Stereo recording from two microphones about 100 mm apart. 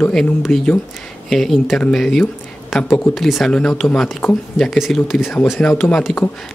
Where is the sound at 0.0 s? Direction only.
5° left (ahead or behind).